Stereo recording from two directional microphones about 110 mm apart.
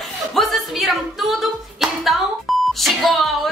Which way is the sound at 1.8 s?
Centre (ahead or behind).